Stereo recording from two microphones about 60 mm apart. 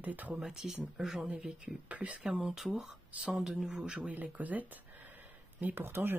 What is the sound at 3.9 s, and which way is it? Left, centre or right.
Speech, right.